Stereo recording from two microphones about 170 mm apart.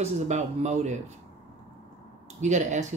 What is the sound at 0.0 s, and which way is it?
Speech, 40° right (ahead or behind).